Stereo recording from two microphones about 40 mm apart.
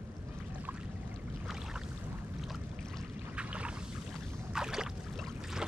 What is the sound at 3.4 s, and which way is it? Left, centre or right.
Boat, right.